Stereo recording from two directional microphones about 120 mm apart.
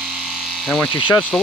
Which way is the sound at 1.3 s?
10° left (ahead or behind).